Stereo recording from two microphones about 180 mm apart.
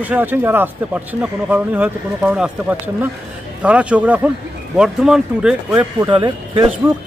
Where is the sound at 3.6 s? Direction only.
5° right (ahead or behind).